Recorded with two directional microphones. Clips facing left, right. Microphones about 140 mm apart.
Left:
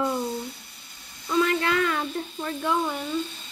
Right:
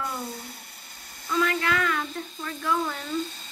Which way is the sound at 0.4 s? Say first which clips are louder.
Left 6 dB; 50° right (ahead or behind).